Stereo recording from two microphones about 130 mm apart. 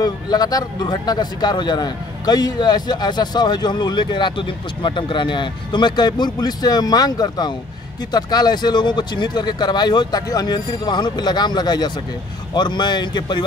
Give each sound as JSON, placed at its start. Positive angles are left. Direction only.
{"t": 0.0, "sound": "a man's voice", "side_deg": 30}